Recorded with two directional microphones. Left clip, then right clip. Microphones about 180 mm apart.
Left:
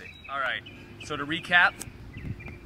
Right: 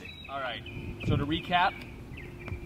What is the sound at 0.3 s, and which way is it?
Speech, 15° left (ahead or behind).